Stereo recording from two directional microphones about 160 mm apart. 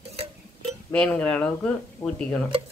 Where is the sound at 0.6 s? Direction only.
5° left (ahead or behind).